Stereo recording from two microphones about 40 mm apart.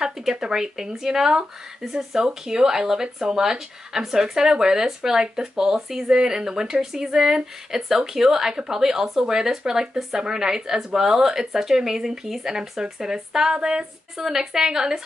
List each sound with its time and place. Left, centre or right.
0.0 s speech: centre
14.2 s speech: centre